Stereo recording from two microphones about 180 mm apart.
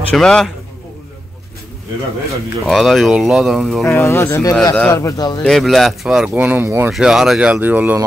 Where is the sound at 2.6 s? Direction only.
Centre (ahead or behind).